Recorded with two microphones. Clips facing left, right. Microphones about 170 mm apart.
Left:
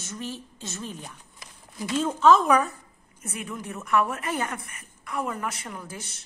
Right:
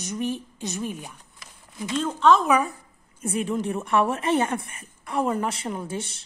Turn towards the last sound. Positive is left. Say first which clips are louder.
# right 8 dB
turn(degrees=-30)  # may be behind; listen again after turning